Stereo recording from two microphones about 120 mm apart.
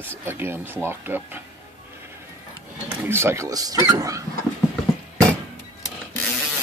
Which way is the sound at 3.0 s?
20° right (ahead or behind).